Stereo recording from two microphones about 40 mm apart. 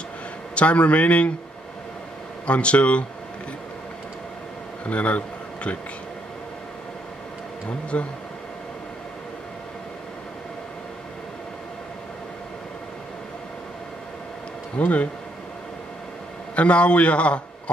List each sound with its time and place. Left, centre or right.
0.6 s a man's voice: left
2.4 s a man's voice: left
4.8 s speech: left
7.9 s a man's voice: left
14.8 s a man's voice: left
16.5 s a man's voice: left